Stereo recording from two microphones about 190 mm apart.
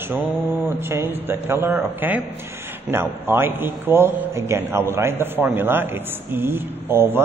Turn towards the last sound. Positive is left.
turn(degrees=-10)  # may be behind; listen again after turning